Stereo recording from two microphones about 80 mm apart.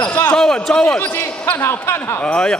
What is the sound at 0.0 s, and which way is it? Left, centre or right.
Basketball bounce, left.